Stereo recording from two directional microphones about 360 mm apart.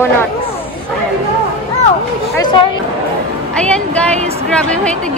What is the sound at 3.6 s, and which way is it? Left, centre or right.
Speech, centre.